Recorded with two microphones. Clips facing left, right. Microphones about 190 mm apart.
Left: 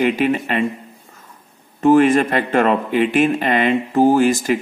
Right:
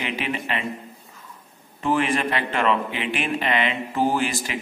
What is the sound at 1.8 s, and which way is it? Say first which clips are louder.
Speech: left 10 dB; 45° left (ahead or behind).